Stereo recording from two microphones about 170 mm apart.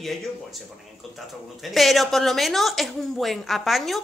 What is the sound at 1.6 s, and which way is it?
A woman's voice, centre (ahead or behind).